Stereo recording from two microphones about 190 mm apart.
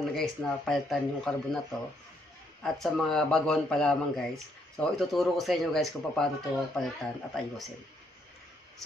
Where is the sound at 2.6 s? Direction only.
Centre (ahead or behind).